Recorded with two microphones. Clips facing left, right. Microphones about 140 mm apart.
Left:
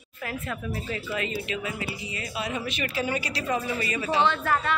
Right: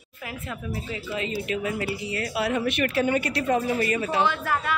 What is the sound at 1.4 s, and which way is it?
A woman's voice, 50° right (ahead or behind).